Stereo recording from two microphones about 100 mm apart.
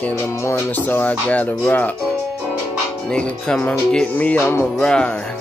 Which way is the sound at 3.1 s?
10° left (ahead or behind).